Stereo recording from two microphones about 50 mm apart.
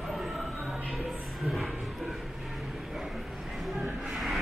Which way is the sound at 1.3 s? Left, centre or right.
Centre.